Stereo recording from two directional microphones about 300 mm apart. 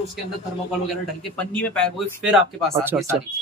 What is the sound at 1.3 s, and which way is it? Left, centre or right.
Speech, centre.